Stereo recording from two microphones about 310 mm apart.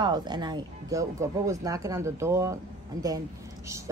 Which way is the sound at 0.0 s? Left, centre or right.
Centre.